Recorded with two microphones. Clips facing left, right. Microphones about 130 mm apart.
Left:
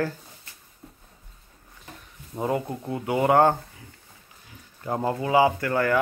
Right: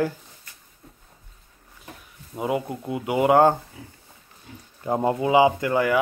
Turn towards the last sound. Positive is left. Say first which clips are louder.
# right 2 dB
turn(degrees=-15)  # may be behind; listen again after turning